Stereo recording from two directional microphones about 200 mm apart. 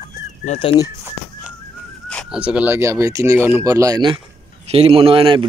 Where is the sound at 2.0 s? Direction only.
5° left (ahead or behind).